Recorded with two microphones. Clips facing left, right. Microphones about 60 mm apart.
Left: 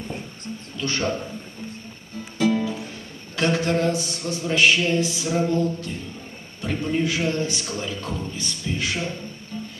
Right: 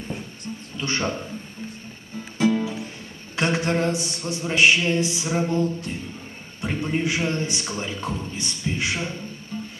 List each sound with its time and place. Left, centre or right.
0.7 s a man's voice: right
2.5 s music: centre
3.3 s a man's voice: right